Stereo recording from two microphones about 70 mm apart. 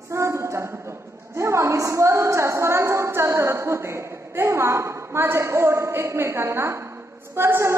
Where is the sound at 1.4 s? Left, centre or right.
Right.